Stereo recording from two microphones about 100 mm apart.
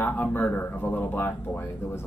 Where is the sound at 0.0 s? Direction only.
20° left (ahead or behind).